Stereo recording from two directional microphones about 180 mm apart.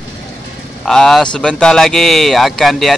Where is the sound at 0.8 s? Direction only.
Centre (ahead or behind).